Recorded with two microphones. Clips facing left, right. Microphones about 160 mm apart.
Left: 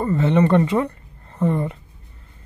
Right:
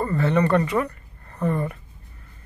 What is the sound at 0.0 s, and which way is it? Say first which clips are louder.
Speech: left 3 dB; 20° left (ahead or behind).